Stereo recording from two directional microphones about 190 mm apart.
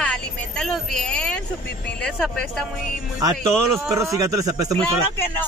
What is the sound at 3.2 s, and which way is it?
Speech, 15° right (ahead or behind).